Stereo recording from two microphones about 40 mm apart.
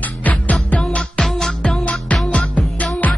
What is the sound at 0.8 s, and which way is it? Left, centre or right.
Music, left.